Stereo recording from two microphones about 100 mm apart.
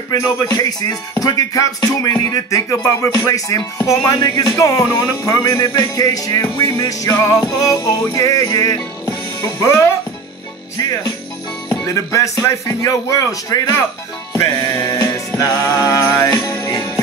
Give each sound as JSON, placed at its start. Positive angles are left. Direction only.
{"t": 0.1, "sound": "music", "side_deg": 35}
{"t": 11.8, "sound": "music", "side_deg": 30}